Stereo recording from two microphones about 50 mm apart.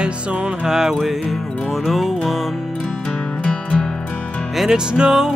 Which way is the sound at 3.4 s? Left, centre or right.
Left.